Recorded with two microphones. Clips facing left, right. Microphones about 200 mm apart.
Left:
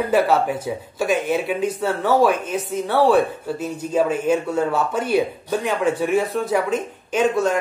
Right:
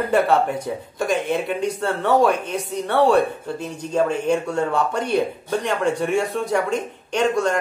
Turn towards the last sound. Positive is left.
turn(degrees=5)  # may be behind; listen again after turning